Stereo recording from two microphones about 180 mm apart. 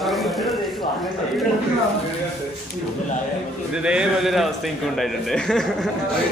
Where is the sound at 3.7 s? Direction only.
5° right (ahead or behind).